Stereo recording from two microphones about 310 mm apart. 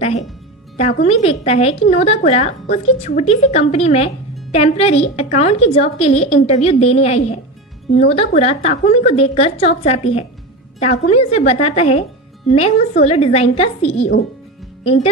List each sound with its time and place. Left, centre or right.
0.7 s a woman's voice: centre